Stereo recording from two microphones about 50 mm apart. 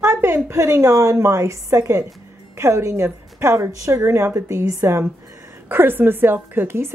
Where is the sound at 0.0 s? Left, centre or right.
Right.